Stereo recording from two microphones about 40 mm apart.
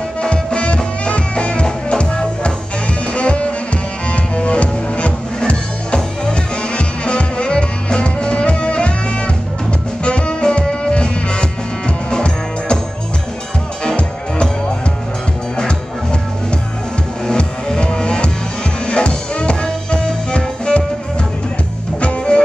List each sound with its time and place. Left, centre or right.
0.2 s music: left
10.0 s music: left
13.8 s music: left
17.4 s music: left
22.0 s music: left